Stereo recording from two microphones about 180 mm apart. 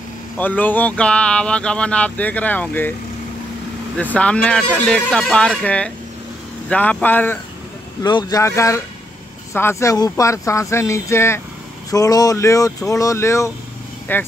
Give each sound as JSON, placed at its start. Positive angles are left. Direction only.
{"t": 0.4, "sound": "speech", "side_deg": 10}
{"t": 3.9, "sound": "speech", "side_deg": 10}
{"t": 8.0, "sound": "speech", "side_deg": 25}